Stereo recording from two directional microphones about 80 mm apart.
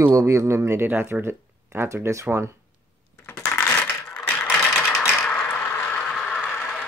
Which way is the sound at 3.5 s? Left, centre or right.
Left.